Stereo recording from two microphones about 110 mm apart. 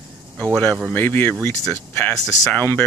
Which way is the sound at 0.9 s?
15° left (ahead or behind).